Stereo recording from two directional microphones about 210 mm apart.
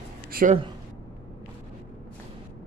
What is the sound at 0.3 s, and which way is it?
Speech, 45° right (ahead or behind).